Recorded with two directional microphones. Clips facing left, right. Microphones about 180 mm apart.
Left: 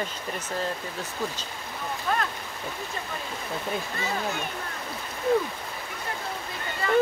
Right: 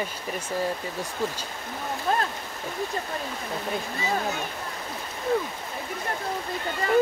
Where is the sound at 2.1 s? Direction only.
35° right (ahead or behind).